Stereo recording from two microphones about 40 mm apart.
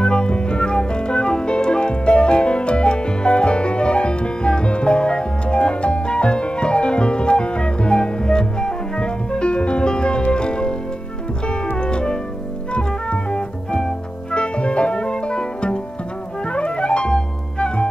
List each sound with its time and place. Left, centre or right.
0.0 s music: left